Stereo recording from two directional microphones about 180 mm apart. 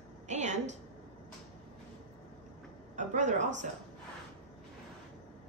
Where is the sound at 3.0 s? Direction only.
45° right (ahead or behind).